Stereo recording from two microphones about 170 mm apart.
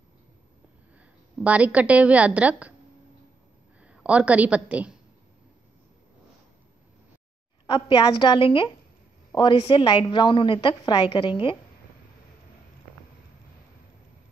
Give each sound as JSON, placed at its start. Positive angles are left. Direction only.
{"t": 1.4, "sound": "a woman's voice", "side_deg": -10}
{"t": 3.8, "sound": "a woman's voice", "side_deg": -5}
{"t": 7.6, "sound": "a woman's voice", "side_deg": 25}